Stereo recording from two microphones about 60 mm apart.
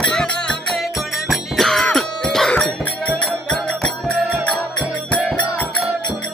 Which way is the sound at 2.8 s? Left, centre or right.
Left.